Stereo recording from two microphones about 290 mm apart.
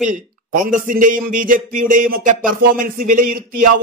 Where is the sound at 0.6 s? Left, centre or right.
Right.